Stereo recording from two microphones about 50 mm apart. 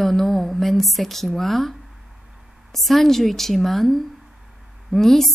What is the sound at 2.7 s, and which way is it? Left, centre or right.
A woman's voice, centre.